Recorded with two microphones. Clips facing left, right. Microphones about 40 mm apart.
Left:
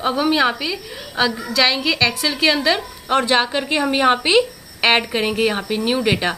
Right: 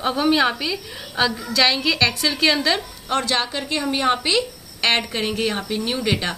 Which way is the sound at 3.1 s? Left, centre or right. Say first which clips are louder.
Left 5 dB; left.